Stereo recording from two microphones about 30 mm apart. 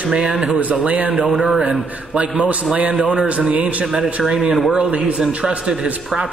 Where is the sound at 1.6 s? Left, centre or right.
Right.